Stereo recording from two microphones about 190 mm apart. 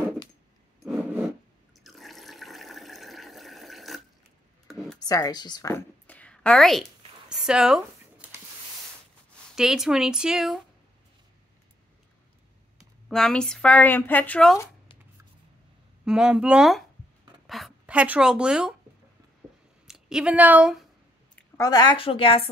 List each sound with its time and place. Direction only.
0.8 s a sound: 5° right (ahead or behind)
1.8 s water: centre (ahead or behind)
5.0 s a sound: 20° left (ahead or behind); by 8.3 s 5° right (ahead or behind)
9.6 s speech: centre (ahead or behind)
12.7 s speech: 5° left (ahead or behind)
16.1 s speech: 5° right (ahead or behind)
17.5 s a sound: centre (ahead or behind)
19.9 s speech: 5° right (ahead or behind)
21.4 s a woman's voice: 20° left (ahead or behind)